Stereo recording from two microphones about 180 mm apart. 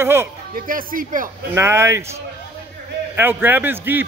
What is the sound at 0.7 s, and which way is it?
Speech, 50° right (ahead or behind).